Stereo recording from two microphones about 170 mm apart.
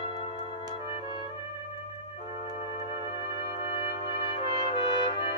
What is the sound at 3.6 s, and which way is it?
Brass instrument, 35° left (ahead or behind).